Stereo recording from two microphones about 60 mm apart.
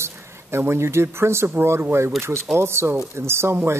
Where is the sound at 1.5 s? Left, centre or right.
Right.